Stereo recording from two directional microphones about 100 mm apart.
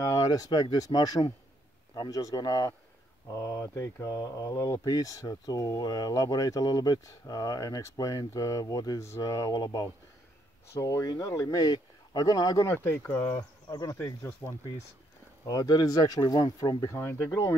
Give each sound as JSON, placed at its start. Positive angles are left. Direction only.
{"t": 0.0, "sound": "speech", "side_deg": 30}
{"t": 12.6, "sound": "speech", "side_deg": 20}
{"t": 13.7, "sound": "speech", "side_deg": 35}
{"t": 13.9, "sound": "speech", "side_deg": 20}
{"t": 15.4, "sound": "speech", "side_deg": 35}
{"t": 17.0, "sound": "speech", "side_deg": 25}